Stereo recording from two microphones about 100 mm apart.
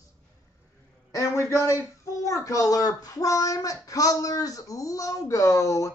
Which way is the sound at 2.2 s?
35° left (ahead or behind).